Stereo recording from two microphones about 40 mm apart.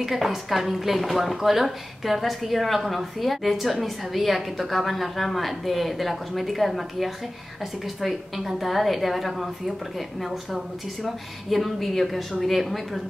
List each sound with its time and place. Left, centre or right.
0.0 s a woman's voice: centre